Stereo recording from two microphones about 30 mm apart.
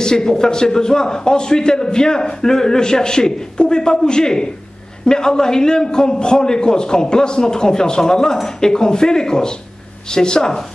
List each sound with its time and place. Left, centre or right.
0.0 s a man's voice: left